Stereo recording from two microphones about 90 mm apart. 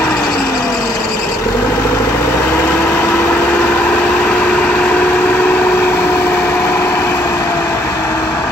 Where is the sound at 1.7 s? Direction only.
35° left (ahead or behind).